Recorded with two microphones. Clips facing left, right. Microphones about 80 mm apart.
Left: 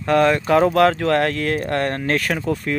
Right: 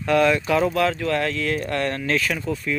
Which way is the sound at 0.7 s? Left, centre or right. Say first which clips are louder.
Left 6 dB; left.